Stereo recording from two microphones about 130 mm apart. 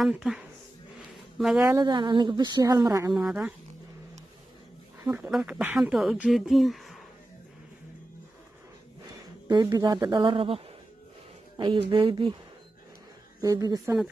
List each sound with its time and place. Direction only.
0.0 s speech: 5° right (ahead or behind)
1.6 s speech: 25° right (ahead or behind)
3.1 s speech: 5° right (ahead or behind)
5.0 s speech: 15° right (ahead or behind)
5.3 s speech: 5° right (ahead or behind)
9.5 s speech: 25° right (ahead or behind)
10.2 s a woman's voice: 45° right (ahead or behind)
13.4 s speech: 25° right (ahead or behind)